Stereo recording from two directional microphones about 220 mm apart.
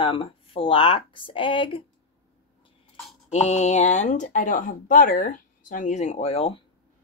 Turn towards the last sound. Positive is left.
turn(degrees=30)  # may be behind; listen again after turning